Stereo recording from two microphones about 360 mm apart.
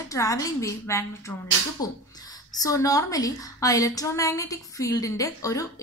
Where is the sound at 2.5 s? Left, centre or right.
Centre.